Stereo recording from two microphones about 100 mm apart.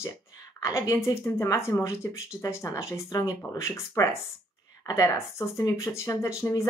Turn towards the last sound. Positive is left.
turn(degrees=30)  # may be behind; listen again after turning